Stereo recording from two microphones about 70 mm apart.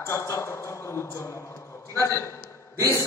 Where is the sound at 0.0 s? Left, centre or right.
Left.